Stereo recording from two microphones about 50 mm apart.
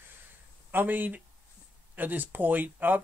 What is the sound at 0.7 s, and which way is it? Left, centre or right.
Speech, right.